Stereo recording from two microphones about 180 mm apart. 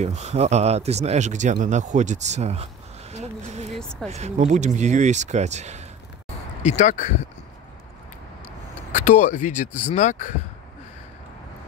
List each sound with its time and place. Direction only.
0.0 s speech: 35° right (ahead or behind)
3.7 s a sound: 5° left (ahead or behind)
4.1 s speech: 40° right (ahead or behind)
6.6 s speech: 40° left (ahead or behind)
8.9 s speech: 45° left (ahead or behind)